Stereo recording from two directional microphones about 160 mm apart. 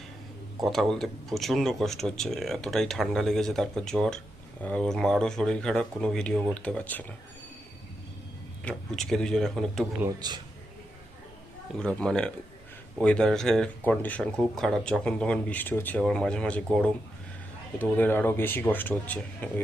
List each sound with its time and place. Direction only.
0.6 s speech: centre (ahead or behind)
8.6 s speech: 5° left (ahead or behind)
10.2 s speech: 25° right (ahead or behind)
11.8 s speech: 5° left (ahead or behind)
17.7 s speech: 10° left (ahead or behind)